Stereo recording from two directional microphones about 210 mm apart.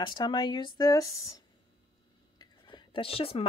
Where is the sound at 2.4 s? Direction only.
20° left (ahead or behind).